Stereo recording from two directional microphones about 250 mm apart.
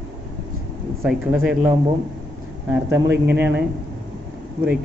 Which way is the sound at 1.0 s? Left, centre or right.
Centre.